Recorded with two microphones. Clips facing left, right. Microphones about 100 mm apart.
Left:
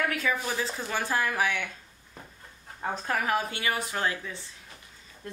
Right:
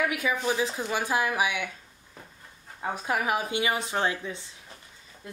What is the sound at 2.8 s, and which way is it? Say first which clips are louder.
Speech: right 1 dB; 10° right (ahead or behind).